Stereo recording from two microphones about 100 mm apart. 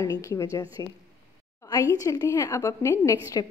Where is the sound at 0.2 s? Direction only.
30° left (ahead or behind).